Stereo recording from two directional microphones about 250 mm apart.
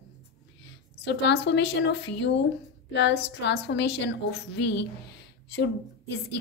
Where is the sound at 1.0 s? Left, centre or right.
Left.